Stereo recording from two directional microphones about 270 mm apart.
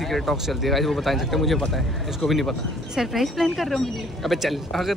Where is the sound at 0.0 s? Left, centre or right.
Centre.